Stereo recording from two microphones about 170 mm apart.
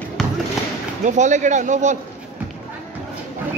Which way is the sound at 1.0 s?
45° right (ahead or behind).